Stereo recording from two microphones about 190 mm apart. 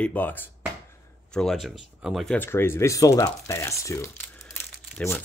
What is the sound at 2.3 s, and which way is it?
Speech, 10° left (ahead or behind).